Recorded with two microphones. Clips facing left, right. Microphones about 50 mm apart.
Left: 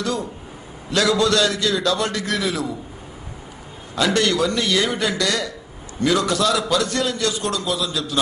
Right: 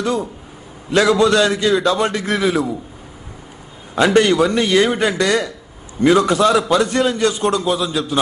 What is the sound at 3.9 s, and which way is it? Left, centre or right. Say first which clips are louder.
A man's voice: right 6 dB; right.